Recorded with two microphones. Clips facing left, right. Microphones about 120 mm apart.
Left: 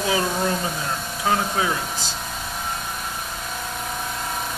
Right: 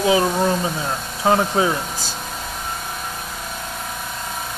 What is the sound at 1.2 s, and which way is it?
Speech, 30° right (ahead or behind).